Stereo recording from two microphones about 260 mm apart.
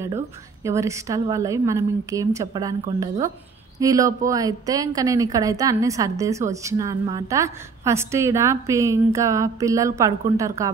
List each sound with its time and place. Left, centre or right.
0.7 s a woman's voice: centre